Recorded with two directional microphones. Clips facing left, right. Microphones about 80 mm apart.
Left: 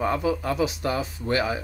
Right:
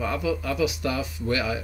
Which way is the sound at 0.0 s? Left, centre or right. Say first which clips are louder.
Left 2 dB; left.